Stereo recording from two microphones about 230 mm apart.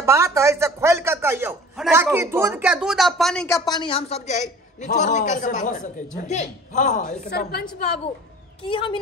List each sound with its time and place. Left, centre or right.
0.0 s a man's voice: centre; by 7.6 s left
8.6 s speech: left